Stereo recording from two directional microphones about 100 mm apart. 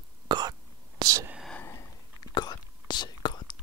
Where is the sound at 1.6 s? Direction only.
30° left (ahead or behind).